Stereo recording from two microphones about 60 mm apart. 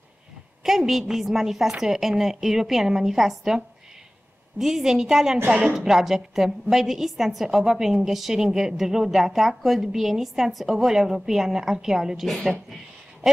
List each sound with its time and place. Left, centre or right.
0.7 s a woman's voice: centre
5.5 s a woman's voice: right
5.8 s a woman's voice: centre